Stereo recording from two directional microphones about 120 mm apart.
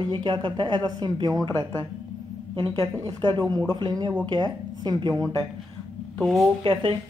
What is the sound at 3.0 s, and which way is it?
Speech, 40° right (ahead or behind).